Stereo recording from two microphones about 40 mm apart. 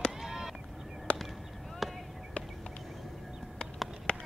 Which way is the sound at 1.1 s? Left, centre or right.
Left.